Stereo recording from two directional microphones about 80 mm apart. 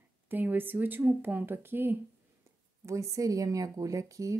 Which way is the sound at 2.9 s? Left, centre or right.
Right.